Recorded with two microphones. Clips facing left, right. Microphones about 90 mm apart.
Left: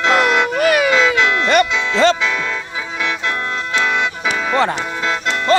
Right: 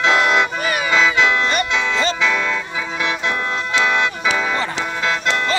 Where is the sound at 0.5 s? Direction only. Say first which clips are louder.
Left 7 dB; 65° left (ahead or behind).